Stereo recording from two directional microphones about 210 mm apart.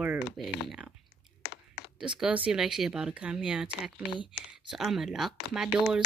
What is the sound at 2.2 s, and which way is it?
Speech, 5° right (ahead or behind).